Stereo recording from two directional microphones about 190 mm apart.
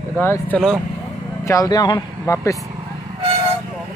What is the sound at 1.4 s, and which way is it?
Speech, 15° left (ahead or behind).